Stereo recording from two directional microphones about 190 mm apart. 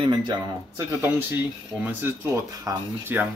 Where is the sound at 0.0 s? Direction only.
25° right (ahead or behind).